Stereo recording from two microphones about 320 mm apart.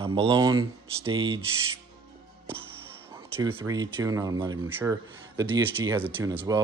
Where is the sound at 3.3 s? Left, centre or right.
Centre.